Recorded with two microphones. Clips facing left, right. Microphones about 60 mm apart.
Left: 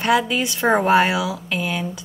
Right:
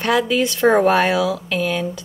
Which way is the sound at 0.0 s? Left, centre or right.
Centre.